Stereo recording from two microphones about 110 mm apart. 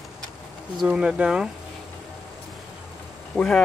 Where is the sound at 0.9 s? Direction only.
10° right (ahead or behind).